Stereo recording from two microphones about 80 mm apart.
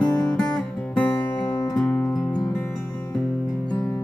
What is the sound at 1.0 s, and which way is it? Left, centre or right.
Music, left.